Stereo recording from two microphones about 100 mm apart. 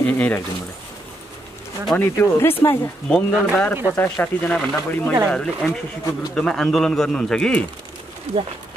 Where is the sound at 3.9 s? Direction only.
20° left (ahead or behind).